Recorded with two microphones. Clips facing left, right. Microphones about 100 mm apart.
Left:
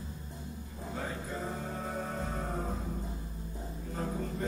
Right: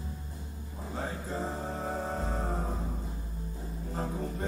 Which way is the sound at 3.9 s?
35° right (ahead or behind).